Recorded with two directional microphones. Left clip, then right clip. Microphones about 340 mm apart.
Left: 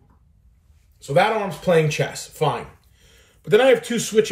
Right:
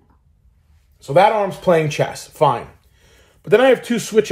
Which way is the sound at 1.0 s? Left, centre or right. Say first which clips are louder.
Right 5 dB; centre.